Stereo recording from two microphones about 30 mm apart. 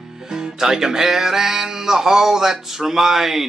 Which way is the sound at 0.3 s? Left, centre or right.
Centre.